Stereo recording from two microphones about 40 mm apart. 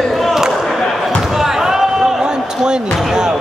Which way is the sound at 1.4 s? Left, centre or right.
Centre.